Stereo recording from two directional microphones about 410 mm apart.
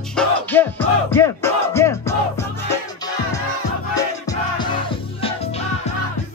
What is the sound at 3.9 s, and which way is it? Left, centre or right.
Music, centre.